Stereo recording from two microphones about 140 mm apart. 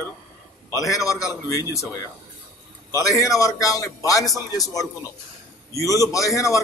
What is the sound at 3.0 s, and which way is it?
A man's voice, 25° left (ahead or behind).